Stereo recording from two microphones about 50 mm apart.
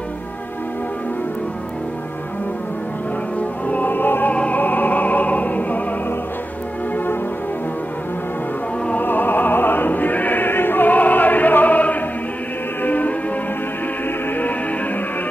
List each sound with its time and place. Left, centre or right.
3.3 s music: left
8.9 s music: left